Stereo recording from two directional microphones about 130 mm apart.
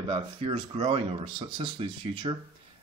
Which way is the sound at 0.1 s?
45° right (ahead or behind).